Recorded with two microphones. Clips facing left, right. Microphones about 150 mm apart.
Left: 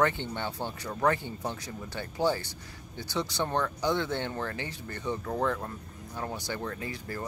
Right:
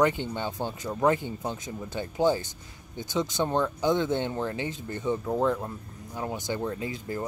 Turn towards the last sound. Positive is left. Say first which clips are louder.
# right 4 dB
turn(degrees=-20)  # may be behind; listen again after turning